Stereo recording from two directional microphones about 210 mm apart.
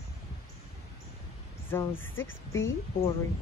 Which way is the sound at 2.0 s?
70° left (ahead or behind).